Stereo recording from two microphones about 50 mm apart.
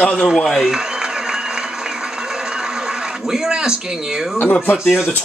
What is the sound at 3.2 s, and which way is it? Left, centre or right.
Speech, centre.